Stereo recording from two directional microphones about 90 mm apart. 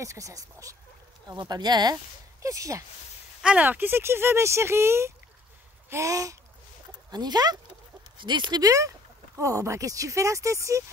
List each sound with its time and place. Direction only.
0.0 s speech: 35° right (ahead or behind)
1.5 s speech: 50° right (ahead or behind)
2.4 s speech: 40° right (ahead or behind)
3.4 s speech: 15° right (ahead or behind); by 6.3 s 40° right (ahead or behind)
7.1 s speech: 50° right (ahead or behind); by 10.8 s 35° right (ahead or behind)